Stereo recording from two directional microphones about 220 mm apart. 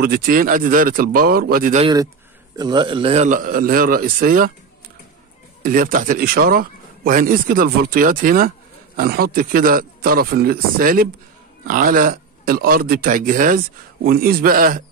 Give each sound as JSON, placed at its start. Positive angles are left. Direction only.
{"t": 0.0, "sound": "speech", "side_deg": -40}
{"t": 1.8, "sound": "a man's voice", "side_deg": -20}
{"t": 5.6, "sound": "speech", "side_deg": -40}